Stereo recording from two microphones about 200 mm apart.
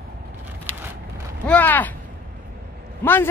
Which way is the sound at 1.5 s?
10° left (ahead or behind).